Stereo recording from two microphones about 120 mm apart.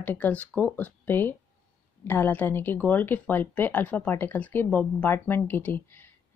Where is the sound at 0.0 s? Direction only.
15° left (ahead or behind).